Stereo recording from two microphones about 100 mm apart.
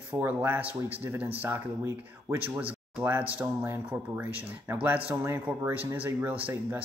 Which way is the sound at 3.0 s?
20° right (ahead or behind).